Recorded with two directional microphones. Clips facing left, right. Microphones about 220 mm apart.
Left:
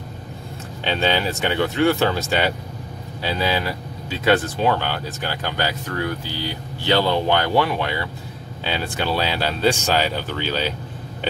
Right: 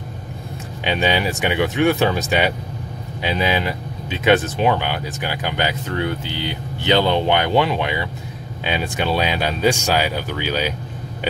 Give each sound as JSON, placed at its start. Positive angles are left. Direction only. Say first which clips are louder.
{"t": 0.8, "sound": "speech", "louder": "right 1 dB", "side_deg": -15}